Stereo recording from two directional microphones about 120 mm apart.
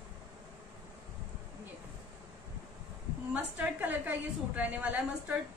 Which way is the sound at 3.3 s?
15° right (ahead or behind).